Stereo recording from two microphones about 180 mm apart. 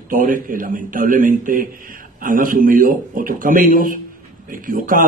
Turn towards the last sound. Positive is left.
turn(degrees=-50)  # may be behind; listen again after turning